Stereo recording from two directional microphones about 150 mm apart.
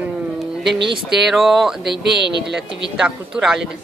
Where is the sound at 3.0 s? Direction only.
5° right (ahead or behind).